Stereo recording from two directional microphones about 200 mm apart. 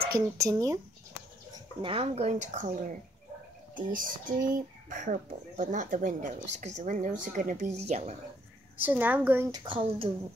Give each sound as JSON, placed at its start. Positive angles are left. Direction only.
{"t": 0.0, "sound": "a woman's voice", "side_deg": -20}
{"t": 1.8, "sound": "speech", "side_deg": -25}
{"t": 3.7, "sound": "speech", "side_deg": -45}
{"t": 8.7, "sound": "a woman's voice", "side_deg": -10}